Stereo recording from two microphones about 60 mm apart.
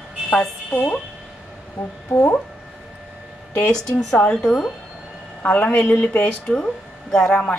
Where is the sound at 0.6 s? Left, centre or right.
Left.